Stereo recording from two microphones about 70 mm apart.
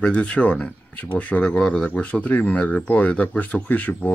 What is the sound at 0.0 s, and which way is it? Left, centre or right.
Speech, centre.